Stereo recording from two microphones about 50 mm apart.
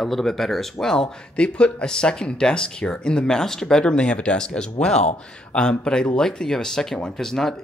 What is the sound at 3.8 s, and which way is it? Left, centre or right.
Speech, left.